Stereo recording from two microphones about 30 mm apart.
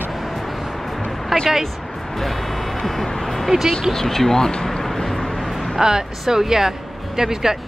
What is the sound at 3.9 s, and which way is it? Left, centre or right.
Speech, centre.